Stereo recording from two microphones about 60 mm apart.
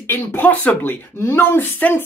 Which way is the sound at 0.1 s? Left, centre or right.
Left.